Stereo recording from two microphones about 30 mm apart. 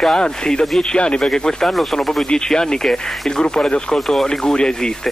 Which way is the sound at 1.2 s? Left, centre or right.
Centre.